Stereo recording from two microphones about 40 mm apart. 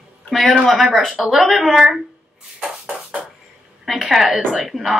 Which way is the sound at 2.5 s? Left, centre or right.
Right.